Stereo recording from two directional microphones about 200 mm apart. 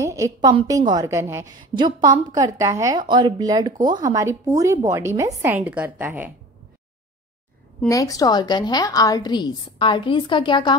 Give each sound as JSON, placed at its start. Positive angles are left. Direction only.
{"t": 0.0, "sound": "a woman's voice", "side_deg": -15}
{"t": 7.9, "sound": "a woman's voice", "side_deg": 15}